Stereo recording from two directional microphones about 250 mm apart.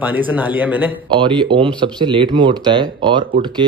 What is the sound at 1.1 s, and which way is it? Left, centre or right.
Speech, centre.